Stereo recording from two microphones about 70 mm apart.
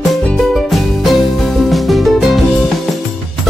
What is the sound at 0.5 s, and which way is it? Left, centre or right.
Music, centre.